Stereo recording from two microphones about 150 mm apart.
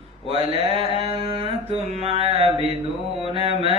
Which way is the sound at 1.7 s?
45° right (ahead or behind).